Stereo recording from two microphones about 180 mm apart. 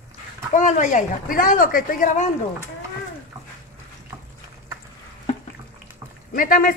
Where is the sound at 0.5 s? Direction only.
45° left (ahead or behind).